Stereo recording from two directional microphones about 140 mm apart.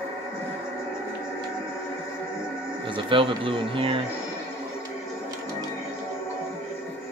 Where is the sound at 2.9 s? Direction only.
35° right (ahead or behind).